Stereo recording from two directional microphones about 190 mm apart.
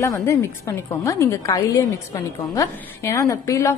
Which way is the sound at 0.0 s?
15° left (ahead or behind).